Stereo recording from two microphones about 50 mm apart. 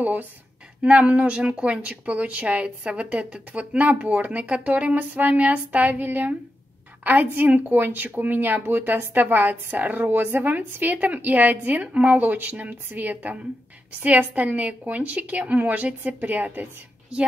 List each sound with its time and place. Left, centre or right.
0.0 s a woman's voice: right
7.8 s a woman's voice: right